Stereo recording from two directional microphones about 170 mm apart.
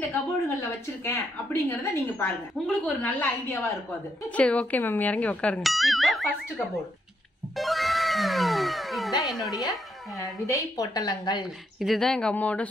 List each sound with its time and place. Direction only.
0.1 s a woman's voice: 15° left (ahead or behind); by 6.3 s centre (ahead or behind)
7.5 s speech: centre (ahead or behind)
10.4 s a woman's voice: 20° left (ahead or behind)
11.8 s speech: centre (ahead or behind)